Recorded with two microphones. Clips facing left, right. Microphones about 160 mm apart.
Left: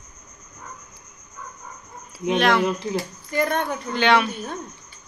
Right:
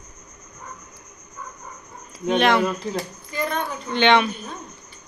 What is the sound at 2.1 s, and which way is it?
Speech, 5° left (ahead or behind).